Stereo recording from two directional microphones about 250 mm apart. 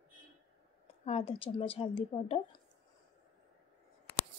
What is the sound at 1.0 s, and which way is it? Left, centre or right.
Speech, left.